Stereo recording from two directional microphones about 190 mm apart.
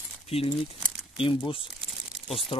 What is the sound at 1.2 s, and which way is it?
Speech, 25° left (ahead or behind).